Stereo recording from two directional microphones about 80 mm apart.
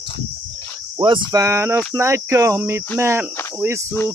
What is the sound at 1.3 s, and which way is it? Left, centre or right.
Speech, right.